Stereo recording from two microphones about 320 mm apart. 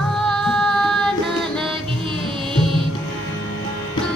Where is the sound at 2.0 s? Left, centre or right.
Centre.